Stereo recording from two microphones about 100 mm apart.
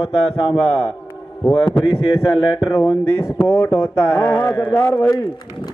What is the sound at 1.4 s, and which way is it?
Speech, 5° left (ahead or behind).